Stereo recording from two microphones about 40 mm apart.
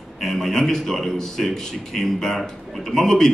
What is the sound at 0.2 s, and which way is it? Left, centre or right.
A man's voice, centre.